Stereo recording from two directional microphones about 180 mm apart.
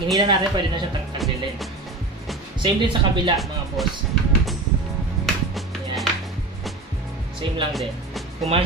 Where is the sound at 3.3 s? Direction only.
Centre (ahead or behind).